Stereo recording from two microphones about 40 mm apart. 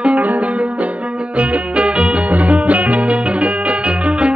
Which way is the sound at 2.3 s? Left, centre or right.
Right.